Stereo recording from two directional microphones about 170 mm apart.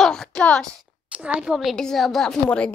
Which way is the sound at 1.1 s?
5° right (ahead or behind).